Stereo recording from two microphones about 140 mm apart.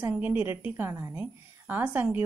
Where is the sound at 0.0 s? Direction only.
15° right (ahead or behind).